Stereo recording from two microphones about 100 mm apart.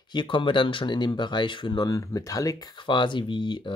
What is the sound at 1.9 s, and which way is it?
Speech, 35° left (ahead or behind).